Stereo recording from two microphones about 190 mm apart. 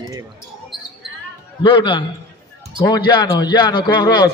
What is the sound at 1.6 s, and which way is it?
A man's voice, 25° left (ahead or behind).